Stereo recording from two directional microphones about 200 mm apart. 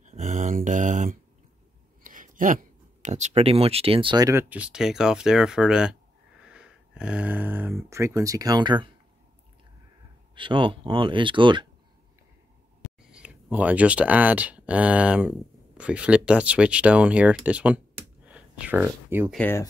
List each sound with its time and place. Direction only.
0.0 s a sound: 35° right (ahead or behind)
2.0 s speech: 40° right (ahead or behind); by 8.9 s 20° right (ahead or behind)
10.3 s speech: 25° right (ahead or behind)
13.1 s speech: 5° right (ahead or behind)
19.3 s speech: 10° left (ahead or behind)